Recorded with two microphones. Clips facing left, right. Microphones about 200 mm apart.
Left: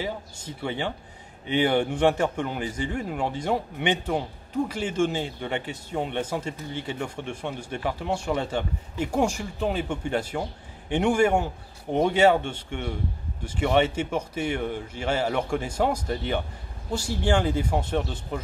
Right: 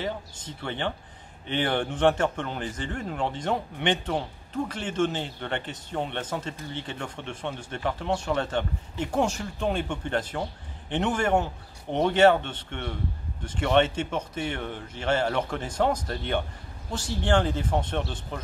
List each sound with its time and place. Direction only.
0.0 s speech: 10° left (ahead or behind)